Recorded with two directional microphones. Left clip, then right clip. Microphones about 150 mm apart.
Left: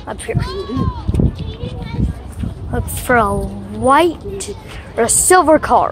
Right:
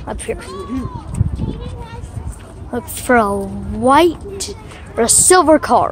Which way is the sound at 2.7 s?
35° right (ahead or behind).